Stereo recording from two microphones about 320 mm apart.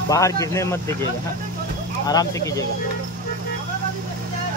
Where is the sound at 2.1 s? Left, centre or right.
Centre.